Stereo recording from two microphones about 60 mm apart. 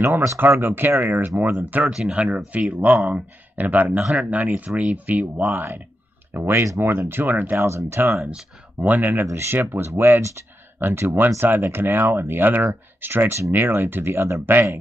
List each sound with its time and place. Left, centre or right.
0.4 s speech: right
1.9 s speech: centre
2.1 s speech: right
5.5 s speech: right
7.5 s speech: right
8.7 s speech: right
9.2 s speech: right
14.4 s speech: right